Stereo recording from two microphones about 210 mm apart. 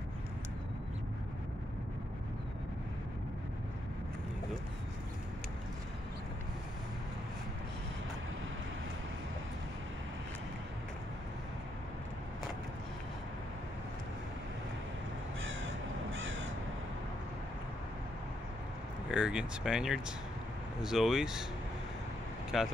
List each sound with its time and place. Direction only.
15.4 s crow: 65° right (ahead or behind)
19.0 s speech: 5° right (ahead or behind)
22.5 s speech: centre (ahead or behind)